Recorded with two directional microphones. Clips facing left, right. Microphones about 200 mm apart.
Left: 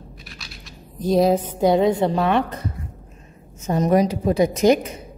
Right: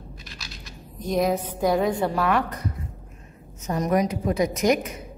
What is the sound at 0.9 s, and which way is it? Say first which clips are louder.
A woman's voice: left 6 dB; 30° left (ahead or behind).